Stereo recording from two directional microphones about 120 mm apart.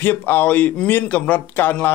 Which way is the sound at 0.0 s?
15° left (ahead or behind).